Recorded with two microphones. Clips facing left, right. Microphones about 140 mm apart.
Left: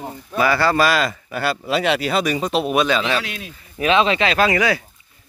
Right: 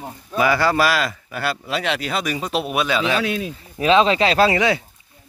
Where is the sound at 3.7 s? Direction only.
35° right (ahead or behind).